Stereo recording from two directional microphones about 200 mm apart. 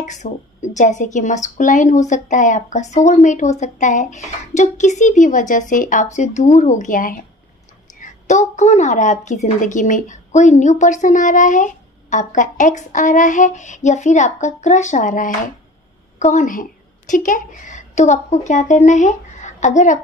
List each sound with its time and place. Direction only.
0.0 s speech: 35° left (ahead or behind)